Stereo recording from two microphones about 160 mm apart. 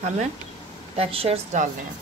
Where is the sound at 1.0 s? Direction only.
40° right (ahead or behind).